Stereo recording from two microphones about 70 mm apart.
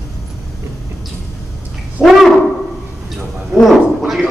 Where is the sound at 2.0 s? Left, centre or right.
Centre.